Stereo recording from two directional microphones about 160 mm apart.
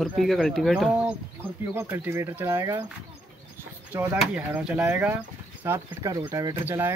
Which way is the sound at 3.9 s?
15° right (ahead or behind).